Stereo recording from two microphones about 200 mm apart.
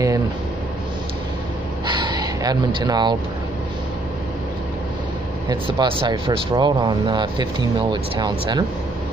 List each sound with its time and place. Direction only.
1.9 s gasp: 20° right (ahead or behind)
5.5 s speech: 25° right (ahead or behind)